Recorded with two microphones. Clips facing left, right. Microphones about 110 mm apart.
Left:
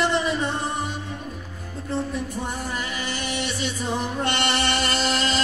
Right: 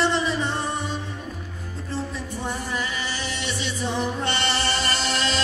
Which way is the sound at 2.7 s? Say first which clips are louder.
Right 1 dB; 55° left (ahead or behind).